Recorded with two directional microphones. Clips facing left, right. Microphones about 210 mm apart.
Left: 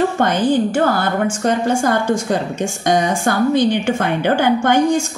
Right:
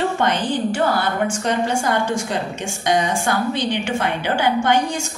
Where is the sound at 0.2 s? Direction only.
45° left (ahead or behind).